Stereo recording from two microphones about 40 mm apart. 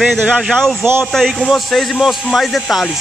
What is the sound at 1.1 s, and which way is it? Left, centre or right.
A man's voice, centre.